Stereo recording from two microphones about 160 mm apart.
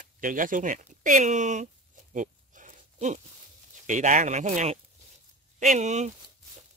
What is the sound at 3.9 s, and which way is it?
Speech, 50° right (ahead or behind).